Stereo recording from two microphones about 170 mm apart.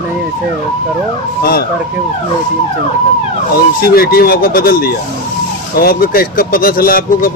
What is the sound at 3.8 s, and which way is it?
A man's voice, 60° left (ahead or behind).